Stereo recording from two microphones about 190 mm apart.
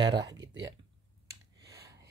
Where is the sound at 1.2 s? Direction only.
20° right (ahead or behind).